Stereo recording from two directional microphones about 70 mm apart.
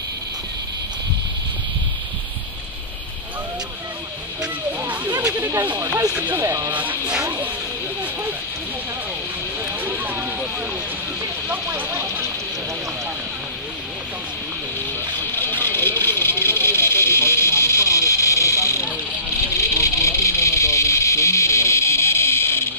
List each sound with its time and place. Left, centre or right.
4.8 s a sound: right
5.8 s speech: right
6.7 s speech: right
9.8 s a sound: right
11.4 s speech: right
15.6 s vehicle: left